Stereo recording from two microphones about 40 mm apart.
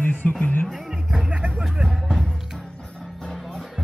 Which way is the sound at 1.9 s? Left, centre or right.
Centre.